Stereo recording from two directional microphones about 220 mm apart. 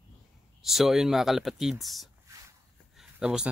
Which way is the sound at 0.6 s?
Centre (ahead or behind).